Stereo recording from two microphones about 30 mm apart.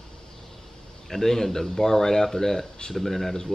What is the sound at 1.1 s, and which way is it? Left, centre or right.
Speech, centre.